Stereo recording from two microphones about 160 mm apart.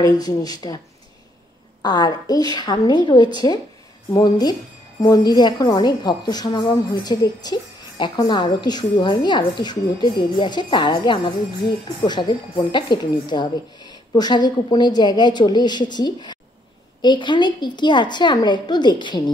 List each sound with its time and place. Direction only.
0.0 s speech: 25° left (ahead or behind)
1.8 s speech: 25° left (ahead or behind)